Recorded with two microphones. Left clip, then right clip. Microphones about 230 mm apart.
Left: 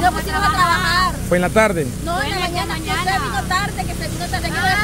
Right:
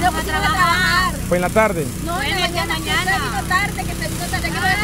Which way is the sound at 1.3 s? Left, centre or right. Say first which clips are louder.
Left 1 dB; centre.